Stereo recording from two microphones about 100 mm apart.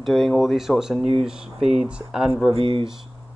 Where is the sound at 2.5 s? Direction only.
65° right (ahead or behind).